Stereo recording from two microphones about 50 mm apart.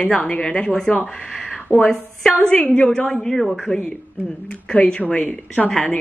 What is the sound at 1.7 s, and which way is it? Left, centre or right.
Speech, left.